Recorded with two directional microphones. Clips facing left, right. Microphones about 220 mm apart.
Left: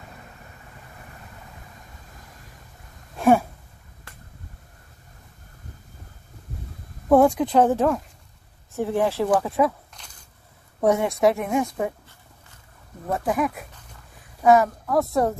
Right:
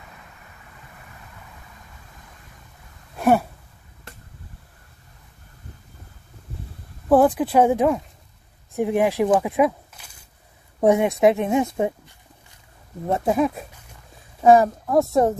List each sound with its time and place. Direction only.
3.2 s a sound: 5° right (ahead or behind)
7.1 s speech: 5° right (ahead or behind)
10.8 s speech: 20° right (ahead or behind)